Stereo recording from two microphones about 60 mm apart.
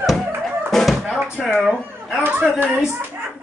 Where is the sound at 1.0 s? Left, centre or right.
Centre.